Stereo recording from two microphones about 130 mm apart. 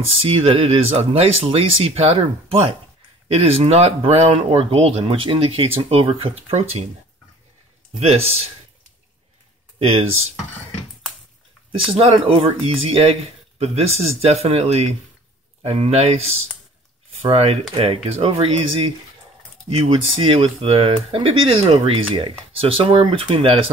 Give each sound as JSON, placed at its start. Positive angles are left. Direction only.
{"t": 0.1, "sound": "speech", "side_deg": -45}
{"t": 8.0, "sound": "speech", "side_deg": -50}
{"t": 9.8, "sound": "speech", "side_deg": -50}
{"t": 12.0, "sound": "speech", "side_deg": -50}